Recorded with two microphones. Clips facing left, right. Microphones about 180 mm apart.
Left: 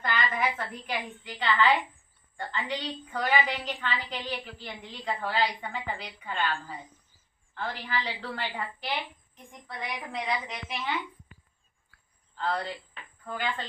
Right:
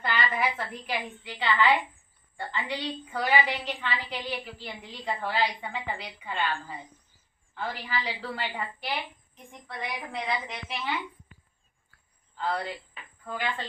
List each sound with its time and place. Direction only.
0.0 s a woman's voice: 5° right (ahead or behind)
12.4 s a woman's voice: 10° right (ahead or behind)